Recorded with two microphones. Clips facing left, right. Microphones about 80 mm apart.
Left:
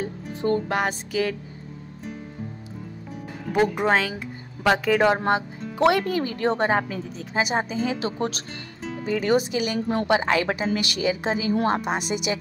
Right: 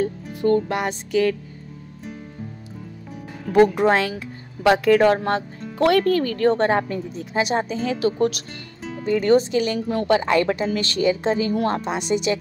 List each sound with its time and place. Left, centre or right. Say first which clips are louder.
0.0 s music: right 5 dB; left
0.7 s speech: even; centre
3.5 s speech: right 5 dB; centre
5.0 s a woman's voice: right 2 dB; centre
6.7 s speech: right 2 dB; centre
7.9 s speech: right 6 dB; left
9.0 s a woman's voice: right 5 dB; centre
9.8 s speech: right 1 dB; left
10.0 s a woman's voice: right 4 dB; left
11.5 s speech: even; left
12.0 s a woman's voice: right 5 dB; centre